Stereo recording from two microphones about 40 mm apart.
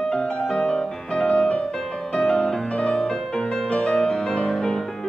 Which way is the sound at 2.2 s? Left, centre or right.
Centre.